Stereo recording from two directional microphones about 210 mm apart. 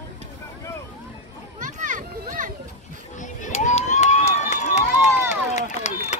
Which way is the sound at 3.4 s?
35° left (ahead or behind).